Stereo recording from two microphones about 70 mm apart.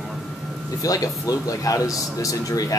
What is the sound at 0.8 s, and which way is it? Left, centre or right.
A man's voice, left.